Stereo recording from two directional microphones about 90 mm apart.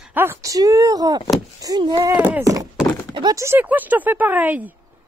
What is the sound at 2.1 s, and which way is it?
Speech, 15° right (ahead or behind).